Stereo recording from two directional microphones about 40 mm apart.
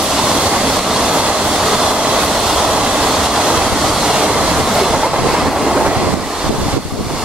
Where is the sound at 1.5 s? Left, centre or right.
Centre.